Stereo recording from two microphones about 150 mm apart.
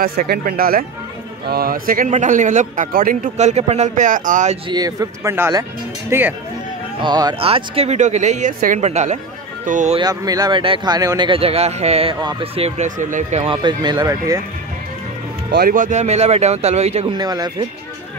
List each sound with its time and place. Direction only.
0.0 s speech: 80° right
3.3 s speech: 50° right (ahead or behind)
4.6 s speech: 25° right (ahead or behind)
7.0 s speech: 30° right (ahead or behind)
7.3 s speech: 40° right (ahead or behind); by 9.9 s 55° right (ahead or behind)
9.9 s speech: 25° right (ahead or behind); by 13.6 s 45° right (ahead or behind)
13.6 s speech: 30° right (ahead or behind)
15.5 s speech: 75° right (ahead or behind); by 17.1 s 45° right (ahead or behind)
17.2 s speech: 25° right (ahead or behind)